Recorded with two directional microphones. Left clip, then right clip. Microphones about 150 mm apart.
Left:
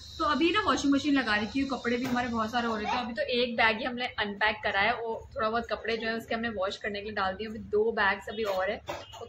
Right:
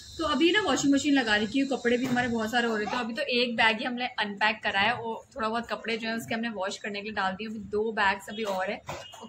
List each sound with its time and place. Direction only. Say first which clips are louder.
0.3 s a woman's voice: right 2 dB; 5° right (ahead or behind)